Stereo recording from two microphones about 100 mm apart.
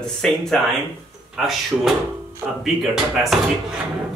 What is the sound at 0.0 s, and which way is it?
Speech, 5° left (ahead or behind).